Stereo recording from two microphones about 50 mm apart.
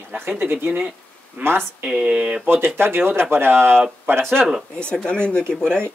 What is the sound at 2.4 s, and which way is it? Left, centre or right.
Speech, right.